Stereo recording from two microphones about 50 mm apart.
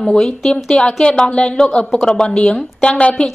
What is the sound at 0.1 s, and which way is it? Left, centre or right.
A woman's voice, centre.